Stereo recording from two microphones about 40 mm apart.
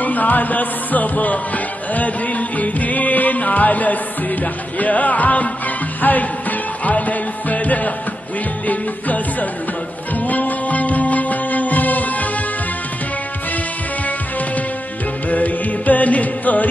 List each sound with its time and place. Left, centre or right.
0.0 s music: left
15.2 s music: left